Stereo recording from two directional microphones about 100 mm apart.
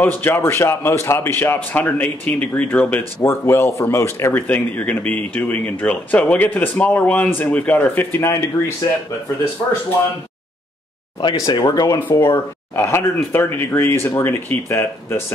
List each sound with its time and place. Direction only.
0.0 s speech: 20° left (ahead or behind)
11.3 s speech: 40° left (ahead or behind)
12.2 s speech: 25° left (ahead or behind)